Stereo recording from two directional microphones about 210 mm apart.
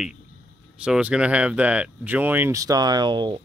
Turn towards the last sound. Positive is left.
turn(degrees=-20)  # may be behind; listen again after turning